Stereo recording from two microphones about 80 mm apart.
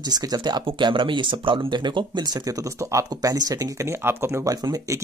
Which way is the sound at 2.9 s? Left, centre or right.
Right.